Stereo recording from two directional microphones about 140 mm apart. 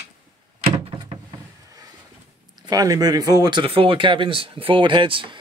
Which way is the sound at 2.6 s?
30° right (ahead or behind).